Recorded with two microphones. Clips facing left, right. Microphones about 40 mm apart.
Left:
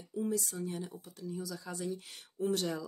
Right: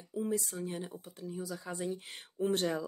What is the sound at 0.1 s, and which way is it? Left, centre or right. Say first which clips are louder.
Speech: even; right.